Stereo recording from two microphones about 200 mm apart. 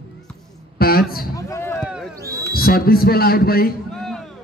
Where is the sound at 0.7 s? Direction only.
50° left (ahead or behind).